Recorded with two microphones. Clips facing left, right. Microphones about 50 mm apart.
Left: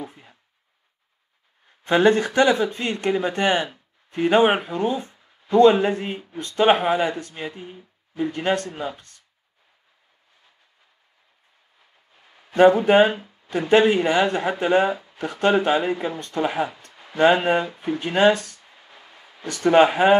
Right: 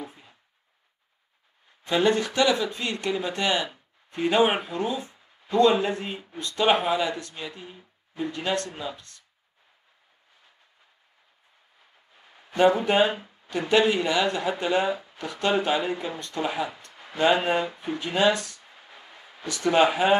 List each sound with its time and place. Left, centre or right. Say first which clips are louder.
0.0 s a sound: left 4 dB; left
1.9 s speech: left 5 dB; left
12.4 s speech: left 6 dB; left
17.7 s speech: left 4 dB; left
18.9 s a sound: even; centre
19.6 s speech: left 5 dB; left